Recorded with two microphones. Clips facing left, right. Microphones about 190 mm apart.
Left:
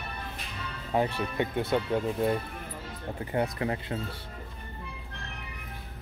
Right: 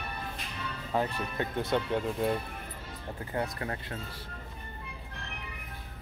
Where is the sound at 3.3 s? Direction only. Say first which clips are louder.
Left 5 dB; 20° left (ahead or behind).